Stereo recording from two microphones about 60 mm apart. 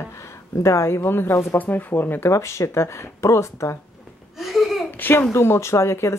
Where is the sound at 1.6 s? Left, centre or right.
Left.